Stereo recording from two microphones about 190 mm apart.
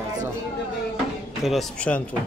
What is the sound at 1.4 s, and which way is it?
Speech, 5° left (ahead or behind).